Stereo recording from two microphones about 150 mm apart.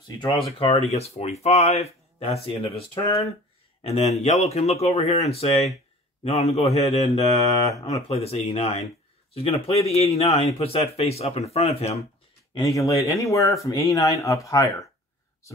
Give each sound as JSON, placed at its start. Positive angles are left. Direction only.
{"t": 0.6, "sound": "a man's voice", "side_deg": 40}
{"t": 12.5, "sound": "speech", "side_deg": 25}